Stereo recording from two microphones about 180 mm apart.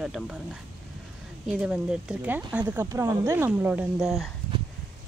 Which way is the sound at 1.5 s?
5° right (ahead or behind).